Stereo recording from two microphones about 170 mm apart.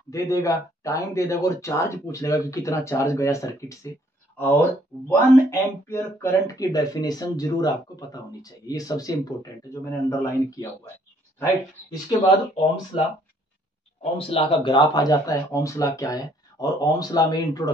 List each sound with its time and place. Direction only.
0.1 s speech: 20° left (ahead or behind)
12.9 s speech: 35° left (ahead or behind)
14.1 s speech: 30° left (ahead or behind)